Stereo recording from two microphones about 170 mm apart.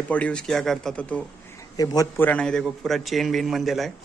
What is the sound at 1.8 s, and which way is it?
Speech, 20° left (ahead or behind).